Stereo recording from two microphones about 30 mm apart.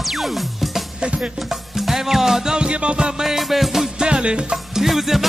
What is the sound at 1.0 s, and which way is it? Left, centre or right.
Music, right.